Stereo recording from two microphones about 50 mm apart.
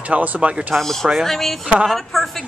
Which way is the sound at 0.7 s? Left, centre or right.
Centre.